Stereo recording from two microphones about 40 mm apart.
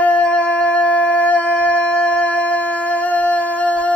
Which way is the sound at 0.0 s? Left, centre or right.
Left.